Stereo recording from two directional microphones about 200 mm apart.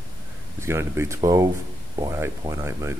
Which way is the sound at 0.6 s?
15° right (ahead or behind).